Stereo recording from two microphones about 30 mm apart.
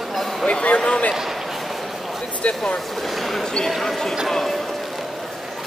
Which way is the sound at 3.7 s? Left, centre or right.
Centre.